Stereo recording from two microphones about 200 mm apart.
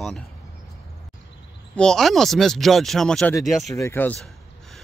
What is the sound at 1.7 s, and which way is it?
Speech, 5° left (ahead or behind).